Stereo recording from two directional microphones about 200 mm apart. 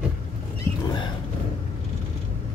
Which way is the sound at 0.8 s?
25° left (ahead or behind).